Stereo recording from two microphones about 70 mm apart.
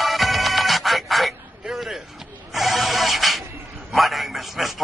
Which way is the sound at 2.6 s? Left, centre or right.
Centre.